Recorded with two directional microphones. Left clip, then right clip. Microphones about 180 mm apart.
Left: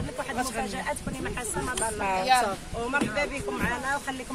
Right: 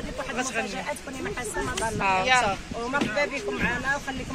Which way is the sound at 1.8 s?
Centre (ahead or behind).